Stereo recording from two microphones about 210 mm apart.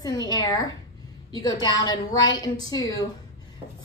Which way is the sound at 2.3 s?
20° left (ahead or behind).